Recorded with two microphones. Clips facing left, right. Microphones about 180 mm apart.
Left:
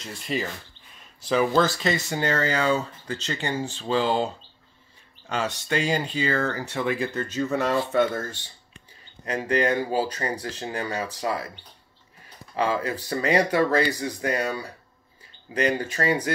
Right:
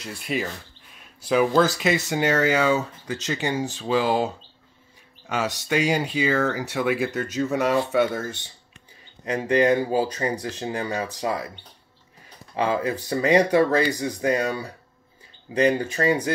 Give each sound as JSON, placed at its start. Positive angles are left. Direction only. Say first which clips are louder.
{"t": 0.0, "sound": "speech", "louder": "right 1 dB", "side_deg": -5}
{"t": 7.7, "sound": "speech", "louder": "right 1 dB", "side_deg": -10}
{"t": 9.2, "sound": "speech", "louder": "right 3 dB", "side_deg": -20}
{"t": 12.5, "sound": "speech", "louder": "right 2 dB", "side_deg": -20}